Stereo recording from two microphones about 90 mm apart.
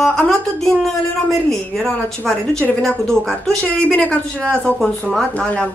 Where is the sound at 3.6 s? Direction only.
15° left (ahead or behind).